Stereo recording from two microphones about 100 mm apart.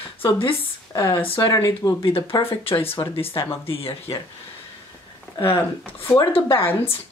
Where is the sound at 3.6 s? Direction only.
70° left (ahead or behind).